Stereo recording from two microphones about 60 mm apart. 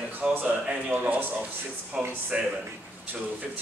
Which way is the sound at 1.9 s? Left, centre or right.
Centre.